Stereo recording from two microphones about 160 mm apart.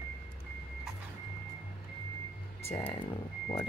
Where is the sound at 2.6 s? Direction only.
40° left (ahead or behind).